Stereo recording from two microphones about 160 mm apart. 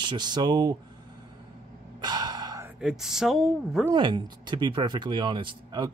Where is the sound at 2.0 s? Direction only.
25° right (ahead or behind).